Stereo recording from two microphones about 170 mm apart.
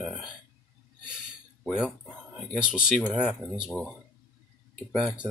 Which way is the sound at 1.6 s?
5° right (ahead or behind).